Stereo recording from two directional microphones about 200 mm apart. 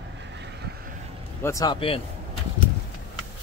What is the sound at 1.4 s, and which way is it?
Speech, 15° left (ahead or behind).